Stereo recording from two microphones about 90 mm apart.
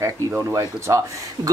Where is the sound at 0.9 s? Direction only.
40° right (ahead or behind).